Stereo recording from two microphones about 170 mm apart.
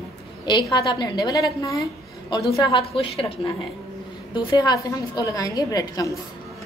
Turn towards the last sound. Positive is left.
turn(degrees=20)  # may be behind; listen again after turning